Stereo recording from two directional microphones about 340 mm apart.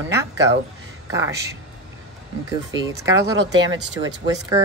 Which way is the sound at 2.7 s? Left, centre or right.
Centre.